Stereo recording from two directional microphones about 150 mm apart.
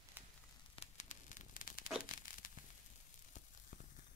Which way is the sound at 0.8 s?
55° left (ahead or behind).